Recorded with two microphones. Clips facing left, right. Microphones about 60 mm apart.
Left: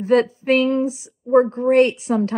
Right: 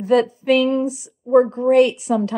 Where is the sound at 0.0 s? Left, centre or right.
Left.